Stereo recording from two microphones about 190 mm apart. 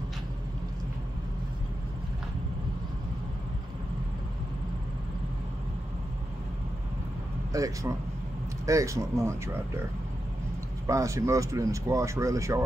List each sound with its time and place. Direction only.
7.5 s speech: 15° right (ahead or behind)
10.9 s speech: 15° right (ahead or behind)